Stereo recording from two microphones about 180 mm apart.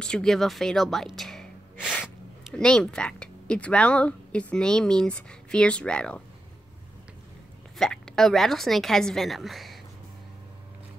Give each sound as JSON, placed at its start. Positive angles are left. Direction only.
{"t": 0.0, "sound": "a woman's voice", "side_deg": 5}
{"t": 2.5, "sound": "a woman's voice", "side_deg": 5}
{"t": 7.7, "sound": "speech", "side_deg": 5}